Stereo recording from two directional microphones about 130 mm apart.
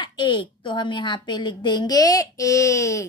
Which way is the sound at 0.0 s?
35° left (ahead or behind).